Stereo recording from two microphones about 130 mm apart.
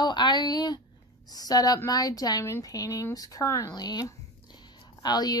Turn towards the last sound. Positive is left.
turn(degrees=30)  # may be behind; listen again after turning